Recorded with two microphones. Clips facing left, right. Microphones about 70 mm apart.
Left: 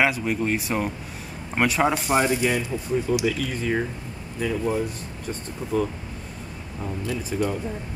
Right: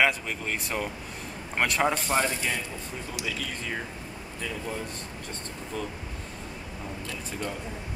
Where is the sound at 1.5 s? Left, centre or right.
Centre.